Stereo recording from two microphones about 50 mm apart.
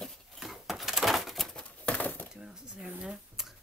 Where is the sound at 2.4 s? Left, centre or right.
Centre.